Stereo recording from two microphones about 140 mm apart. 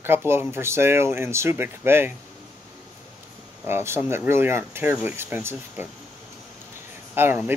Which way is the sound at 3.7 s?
15° right (ahead or behind).